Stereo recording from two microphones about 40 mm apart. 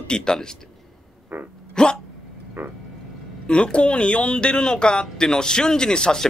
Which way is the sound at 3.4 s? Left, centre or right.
Left.